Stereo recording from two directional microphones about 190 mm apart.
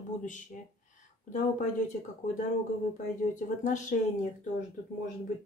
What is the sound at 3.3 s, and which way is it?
Speech, 40° left (ahead or behind).